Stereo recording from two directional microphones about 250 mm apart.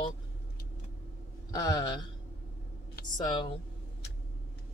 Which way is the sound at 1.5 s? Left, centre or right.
Centre.